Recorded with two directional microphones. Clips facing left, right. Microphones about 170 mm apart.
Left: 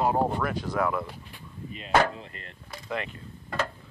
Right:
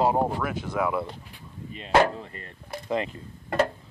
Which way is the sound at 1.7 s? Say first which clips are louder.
Right 3 dB; 35° right (ahead or behind).